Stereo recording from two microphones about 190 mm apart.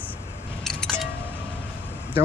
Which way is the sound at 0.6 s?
Centre (ahead or behind).